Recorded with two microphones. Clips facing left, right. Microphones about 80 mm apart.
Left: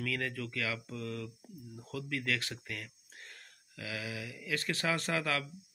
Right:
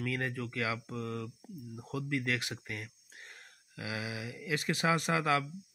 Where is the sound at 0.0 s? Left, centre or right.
Right.